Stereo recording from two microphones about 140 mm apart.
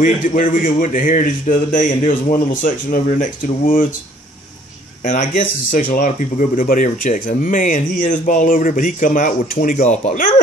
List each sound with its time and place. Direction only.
0.0 s speech: 70° left (ahead or behind)
5.0 s speech: 65° left (ahead or behind)